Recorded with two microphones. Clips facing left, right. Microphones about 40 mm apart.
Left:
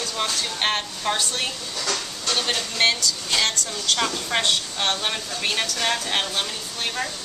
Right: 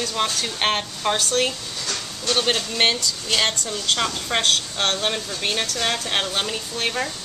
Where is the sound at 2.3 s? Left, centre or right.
Right.